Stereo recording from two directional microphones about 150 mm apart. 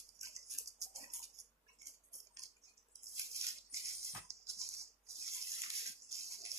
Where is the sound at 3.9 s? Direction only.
45° right (ahead or behind).